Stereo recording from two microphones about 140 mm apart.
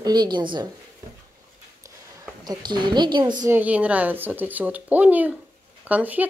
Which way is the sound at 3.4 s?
10° right (ahead or behind).